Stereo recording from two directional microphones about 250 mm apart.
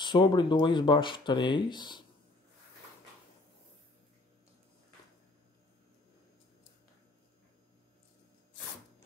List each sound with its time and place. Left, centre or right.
0.0 s speech: centre